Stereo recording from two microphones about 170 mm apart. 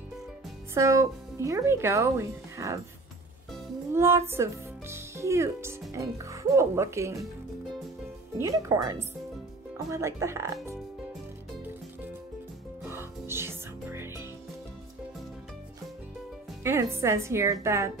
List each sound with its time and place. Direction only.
0.7 s speech: 20° right (ahead or behind)
3.9 s speech: 15° right (ahead or behind)
8.4 s speech: 20° right (ahead or behind)
12.9 s music: 15° right (ahead or behind)
16.6 s speech: 15° right (ahead or behind)